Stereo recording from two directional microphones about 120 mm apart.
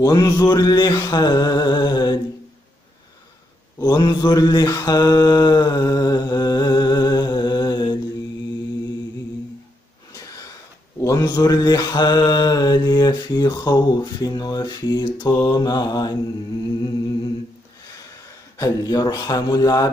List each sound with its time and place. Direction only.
0.0 s mantra: 30° left (ahead or behind)
3.7 s mantra: 35° left (ahead or behind)
10.1 s wheeze: 30° left (ahead or behind)
11.0 s mantra: 30° left (ahead or behind)
18.6 s mantra: 35° left (ahead or behind)